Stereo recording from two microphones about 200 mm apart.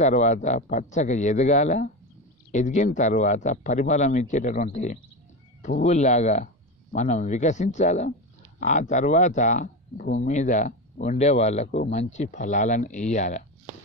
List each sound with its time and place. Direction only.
0.0 s speech: 35° left (ahead or behind)